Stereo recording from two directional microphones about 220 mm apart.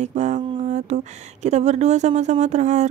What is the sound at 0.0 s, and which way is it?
Speech, 30° right (ahead or behind).